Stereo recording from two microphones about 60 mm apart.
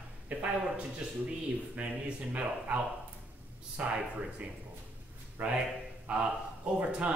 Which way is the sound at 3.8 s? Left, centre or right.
Right.